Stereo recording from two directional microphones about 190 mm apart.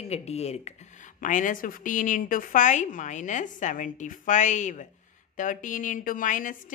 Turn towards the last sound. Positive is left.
turn(degrees=45)  # may be behind; listen again after turning